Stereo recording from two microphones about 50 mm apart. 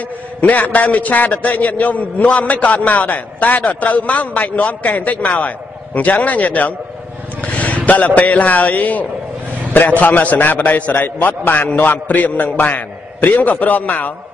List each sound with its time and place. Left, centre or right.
0.4 s a man's voice: left